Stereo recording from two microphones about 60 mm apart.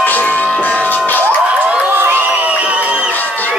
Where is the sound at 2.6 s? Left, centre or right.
Right.